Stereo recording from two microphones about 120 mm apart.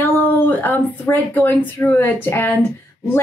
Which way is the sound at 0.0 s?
15° left (ahead or behind).